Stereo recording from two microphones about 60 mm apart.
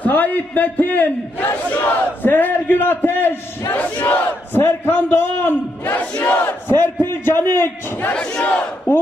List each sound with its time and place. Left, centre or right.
0.0 s a man's voice: left
3.7 s a man's voice: left
5.9 s battle cry: left
6.4 s a man's voice: left
8.1 s battle cry: centre